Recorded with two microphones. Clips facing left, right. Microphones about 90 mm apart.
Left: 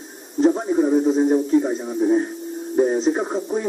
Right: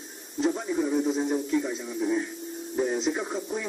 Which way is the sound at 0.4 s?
40° left (ahead or behind).